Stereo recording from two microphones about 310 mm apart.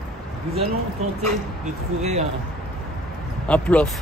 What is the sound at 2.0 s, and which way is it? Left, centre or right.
Speech, right.